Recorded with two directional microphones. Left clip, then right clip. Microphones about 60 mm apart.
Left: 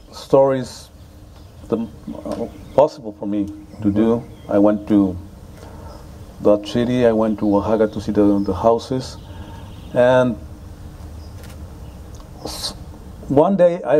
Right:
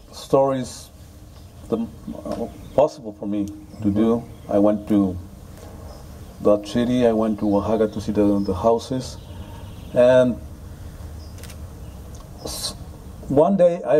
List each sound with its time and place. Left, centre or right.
0.1 s speech: left
6.4 s speech: left
12.4 s rodents: left
13.3 s speech: centre